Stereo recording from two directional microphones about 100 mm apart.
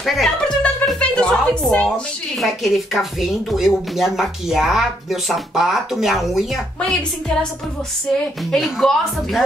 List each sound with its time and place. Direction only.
0.0 s speech: centre (ahead or behind)
2.3 s speech: centre (ahead or behind)
6.8 s a woman's voice: 10° left (ahead or behind)
8.5 s speech: centre (ahead or behind)